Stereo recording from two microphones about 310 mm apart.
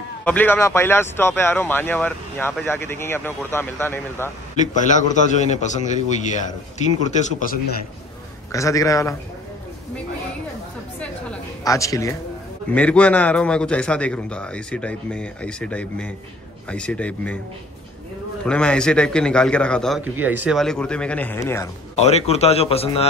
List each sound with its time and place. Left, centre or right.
0.2 s a man's voice: centre
4.6 s a man's voice: left
8.5 s a man's voice: centre
11.0 s a sound: centre
12.7 s a man's voice: centre
18.4 s a man's voice: centre
21.9 s a man's voice: left